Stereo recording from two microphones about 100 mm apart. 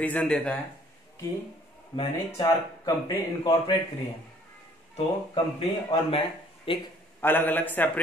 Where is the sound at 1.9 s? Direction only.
45° left (ahead or behind).